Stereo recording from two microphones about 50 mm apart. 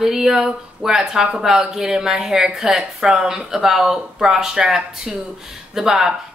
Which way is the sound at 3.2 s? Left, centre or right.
Centre.